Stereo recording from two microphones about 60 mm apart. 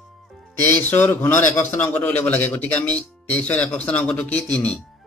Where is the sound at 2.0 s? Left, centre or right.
Left.